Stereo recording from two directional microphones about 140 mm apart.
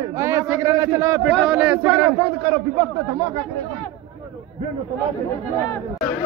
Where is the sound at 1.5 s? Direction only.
10° right (ahead or behind).